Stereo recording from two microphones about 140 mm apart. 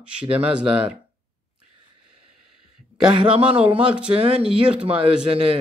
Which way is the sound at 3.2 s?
45° right (ahead or behind).